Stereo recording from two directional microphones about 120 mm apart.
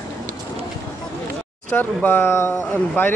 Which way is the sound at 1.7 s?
15° left (ahead or behind).